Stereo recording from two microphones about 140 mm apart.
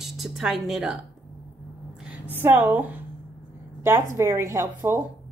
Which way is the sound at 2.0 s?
10° right (ahead or behind).